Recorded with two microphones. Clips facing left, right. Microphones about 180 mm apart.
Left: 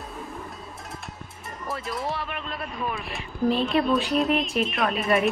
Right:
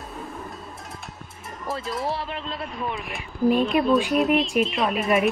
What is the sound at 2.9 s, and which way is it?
Speech, 20° right (ahead or behind).